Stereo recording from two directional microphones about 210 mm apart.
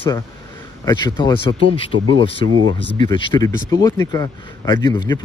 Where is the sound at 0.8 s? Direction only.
20° left (ahead or behind).